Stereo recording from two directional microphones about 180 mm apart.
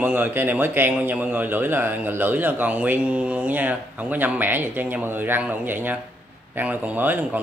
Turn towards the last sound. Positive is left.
turn(degrees=-10)  # may be behind; listen again after turning